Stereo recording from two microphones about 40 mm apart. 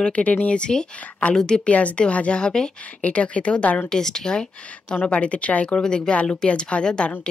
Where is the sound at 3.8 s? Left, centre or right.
Centre.